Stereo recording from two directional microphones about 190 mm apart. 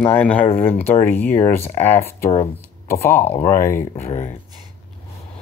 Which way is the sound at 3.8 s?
35° left (ahead or behind).